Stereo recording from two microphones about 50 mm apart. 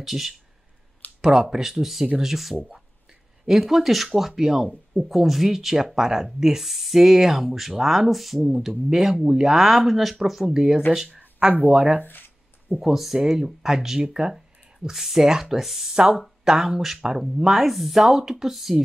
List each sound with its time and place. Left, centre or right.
0.0 s speech: centre
11.1 s a sound: right
12.0 s speech: left
12.8 s speech: centre